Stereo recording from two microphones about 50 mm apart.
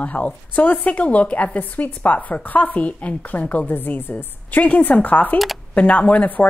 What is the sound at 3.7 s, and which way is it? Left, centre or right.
Speech, left.